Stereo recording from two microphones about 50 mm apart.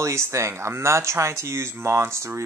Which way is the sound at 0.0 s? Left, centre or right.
Right.